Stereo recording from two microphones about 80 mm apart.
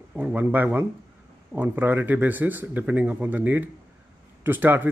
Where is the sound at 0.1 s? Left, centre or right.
Centre.